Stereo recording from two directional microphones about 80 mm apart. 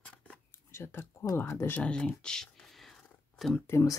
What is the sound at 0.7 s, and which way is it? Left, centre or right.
Speech, left.